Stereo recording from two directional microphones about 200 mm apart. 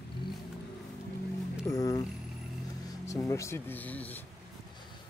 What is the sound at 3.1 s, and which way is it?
Speech, 15° left (ahead or behind).